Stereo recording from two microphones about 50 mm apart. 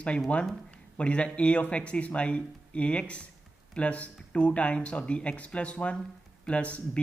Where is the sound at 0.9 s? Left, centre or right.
Left.